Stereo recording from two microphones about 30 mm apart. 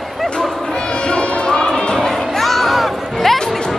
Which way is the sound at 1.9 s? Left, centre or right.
Centre.